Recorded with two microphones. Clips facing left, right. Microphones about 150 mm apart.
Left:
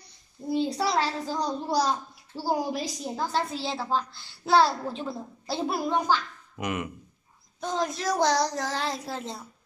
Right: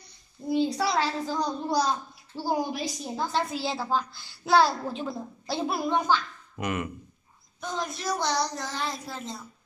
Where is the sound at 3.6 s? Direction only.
Centre (ahead or behind).